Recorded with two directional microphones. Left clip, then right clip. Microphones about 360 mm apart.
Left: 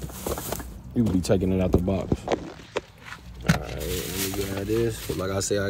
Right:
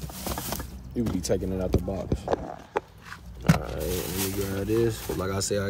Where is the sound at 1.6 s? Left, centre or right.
Left.